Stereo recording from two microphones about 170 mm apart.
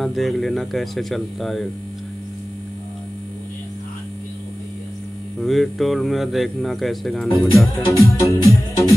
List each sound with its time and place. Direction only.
0.0 s speech: centre (ahead or behind)
5.4 s speech: centre (ahead or behind)
7.5 s music: 15° left (ahead or behind)